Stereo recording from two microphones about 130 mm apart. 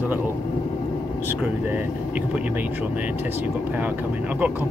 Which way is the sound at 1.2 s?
15° right (ahead or behind).